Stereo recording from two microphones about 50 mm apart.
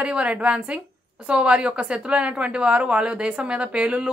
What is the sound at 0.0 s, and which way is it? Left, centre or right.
A woman's voice, right.